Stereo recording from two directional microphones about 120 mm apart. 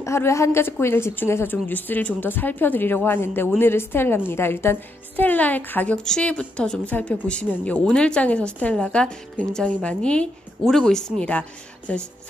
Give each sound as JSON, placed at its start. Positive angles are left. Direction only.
{"t": 0.0, "sound": "a woman's voice", "side_deg": 25}